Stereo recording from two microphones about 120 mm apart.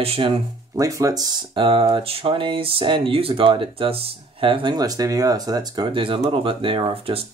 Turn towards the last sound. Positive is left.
turn(degrees=-50)  # may be behind; listen again after turning